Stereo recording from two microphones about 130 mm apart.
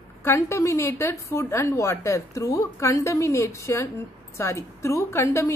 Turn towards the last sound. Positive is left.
turn(degrees=20)  # may be behind; listen again after turning